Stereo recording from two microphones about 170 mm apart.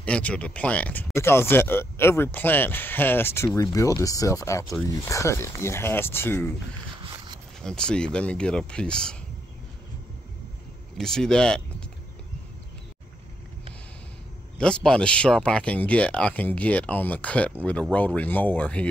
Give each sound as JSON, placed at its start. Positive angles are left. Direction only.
{"t": 0.0, "sound": "speech", "side_deg": 5}
{"t": 7.0, "sound": "a sound", "side_deg": -25}
{"t": 7.6, "sound": "speech", "side_deg": 5}
{"t": 11.0, "sound": "speech", "side_deg": 5}
{"t": 14.6, "sound": "speech", "side_deg": 5}